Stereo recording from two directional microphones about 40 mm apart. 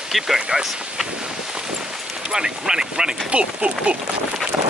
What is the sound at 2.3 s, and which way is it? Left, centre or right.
Speech, centre.